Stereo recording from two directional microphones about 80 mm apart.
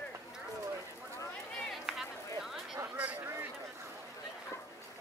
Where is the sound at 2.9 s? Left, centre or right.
Centre.